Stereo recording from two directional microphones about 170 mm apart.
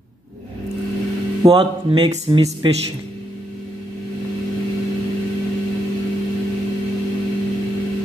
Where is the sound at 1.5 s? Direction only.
30° right (ahead or behind).